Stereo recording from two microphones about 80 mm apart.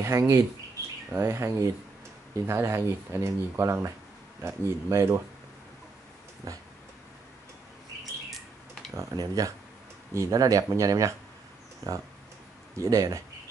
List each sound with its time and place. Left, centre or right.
0.0 s speech: right
9.1 s speech: right
12.7 s speech: right